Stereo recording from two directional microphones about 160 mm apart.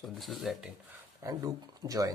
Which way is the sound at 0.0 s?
Centre (ahead or behind).